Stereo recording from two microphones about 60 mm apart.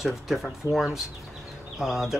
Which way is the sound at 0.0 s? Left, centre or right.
Centre.